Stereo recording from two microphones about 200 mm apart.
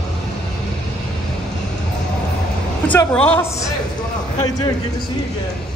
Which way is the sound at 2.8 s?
10° left (ahead or behind).